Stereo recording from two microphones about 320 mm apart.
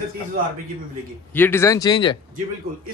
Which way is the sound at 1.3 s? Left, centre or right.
Centre.